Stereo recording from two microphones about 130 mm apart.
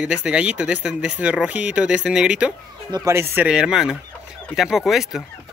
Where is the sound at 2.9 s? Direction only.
20° right (ahead or behind).